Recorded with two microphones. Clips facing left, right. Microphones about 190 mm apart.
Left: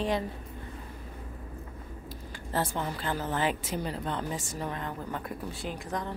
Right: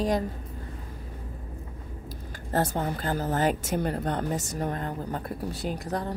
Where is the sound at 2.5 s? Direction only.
40° right (ahead or behind).